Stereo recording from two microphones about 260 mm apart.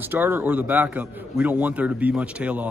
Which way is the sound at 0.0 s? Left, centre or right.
Centre.